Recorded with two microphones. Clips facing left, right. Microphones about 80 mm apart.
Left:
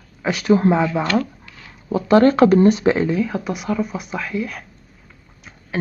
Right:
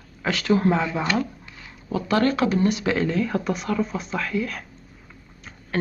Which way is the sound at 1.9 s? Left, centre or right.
Left.